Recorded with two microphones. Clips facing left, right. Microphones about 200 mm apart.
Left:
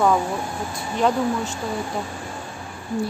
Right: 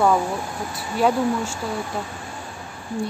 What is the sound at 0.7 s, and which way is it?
Speech, 5° right (ahead or behind).